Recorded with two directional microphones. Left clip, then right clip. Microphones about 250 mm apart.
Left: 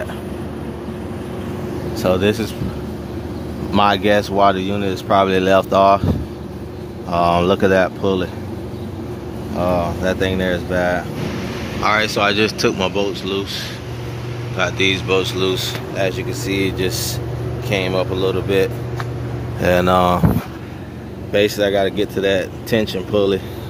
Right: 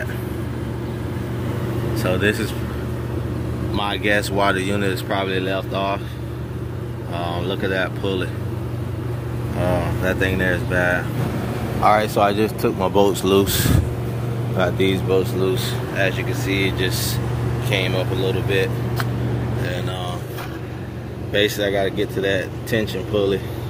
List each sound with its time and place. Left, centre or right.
2.0 s speech: centre
3.7 s speech: left; by 4.9 s centre
5.0 s speech: left
7.2 s speech: left
9.6 s speech: centre
11.8 s speech: centre
12.9 s speech: right
14.6 s speech: centre
15.5 s speech: centre
21.3 s speech: left
21.6 s speech: left
21.9 s speech: centre